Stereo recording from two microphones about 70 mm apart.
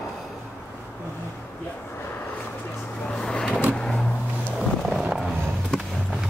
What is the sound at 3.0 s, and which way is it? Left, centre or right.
Vehicle, centre.